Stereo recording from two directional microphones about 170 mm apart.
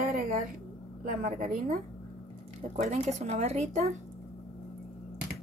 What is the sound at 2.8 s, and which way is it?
A woman's voice, 45° right (ahead or behind).